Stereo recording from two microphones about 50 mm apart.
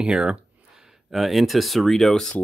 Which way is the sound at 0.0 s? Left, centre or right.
Centre.